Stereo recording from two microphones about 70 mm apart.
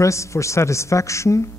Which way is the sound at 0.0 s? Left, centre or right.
Left.